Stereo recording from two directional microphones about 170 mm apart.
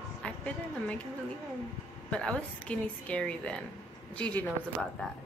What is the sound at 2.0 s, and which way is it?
A woman's voice, 5° left (ahead or behind).